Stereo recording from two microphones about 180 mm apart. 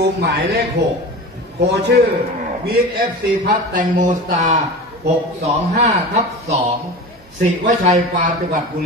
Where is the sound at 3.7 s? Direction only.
45° right (ahead or behind).